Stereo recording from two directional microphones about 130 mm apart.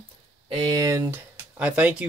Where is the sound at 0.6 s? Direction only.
30° right (ahead or behind); by 2.1 s 10° right (ahead or behind).